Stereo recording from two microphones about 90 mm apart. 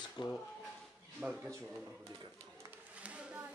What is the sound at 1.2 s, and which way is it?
Speech, 15° right (ahead or behind).